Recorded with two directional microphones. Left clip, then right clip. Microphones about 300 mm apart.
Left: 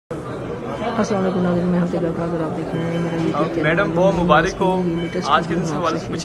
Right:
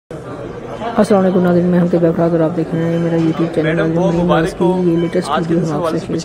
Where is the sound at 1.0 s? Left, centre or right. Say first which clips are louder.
Right 11 dB; centre.